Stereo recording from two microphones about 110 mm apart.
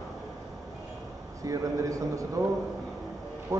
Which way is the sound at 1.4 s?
30° right (ahead or behind).